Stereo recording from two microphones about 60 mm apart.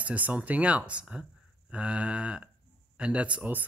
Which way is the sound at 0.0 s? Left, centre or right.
Right.